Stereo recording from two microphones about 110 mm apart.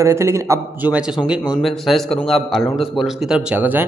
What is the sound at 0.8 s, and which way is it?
Speech, 10° right (ahead or behind).